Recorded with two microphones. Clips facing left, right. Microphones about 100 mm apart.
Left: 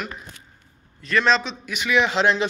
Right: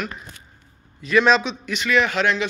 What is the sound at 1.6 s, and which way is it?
Speech, 10° left (ahead or behind).